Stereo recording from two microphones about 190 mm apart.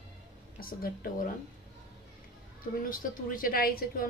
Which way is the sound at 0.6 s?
50° left (ahead or behind).